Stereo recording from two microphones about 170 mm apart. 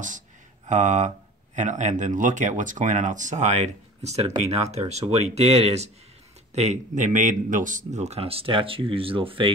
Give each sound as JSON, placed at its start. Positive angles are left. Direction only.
{"t": 0.7, "sound": "speech", "side_deg": -45}